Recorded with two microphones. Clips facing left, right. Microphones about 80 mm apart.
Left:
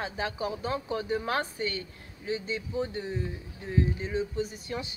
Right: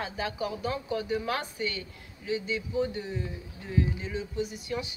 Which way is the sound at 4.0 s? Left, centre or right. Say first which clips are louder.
Left 2 dB; left.